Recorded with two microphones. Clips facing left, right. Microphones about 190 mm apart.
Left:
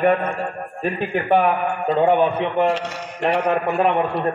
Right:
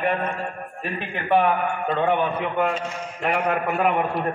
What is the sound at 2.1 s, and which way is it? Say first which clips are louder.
Speech: left 5 dB; 20° left (ahead or behind).